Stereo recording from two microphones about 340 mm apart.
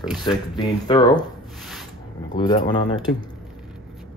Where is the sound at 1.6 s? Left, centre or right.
Centre.